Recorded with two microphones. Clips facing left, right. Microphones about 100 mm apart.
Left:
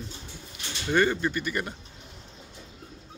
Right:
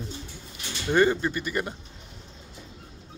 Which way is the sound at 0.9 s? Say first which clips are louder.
Right 2 dB; 20° right (ahead or behind).